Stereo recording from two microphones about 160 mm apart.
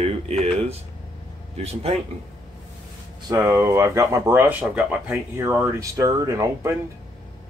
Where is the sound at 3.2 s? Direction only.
20° right (ahead or behind).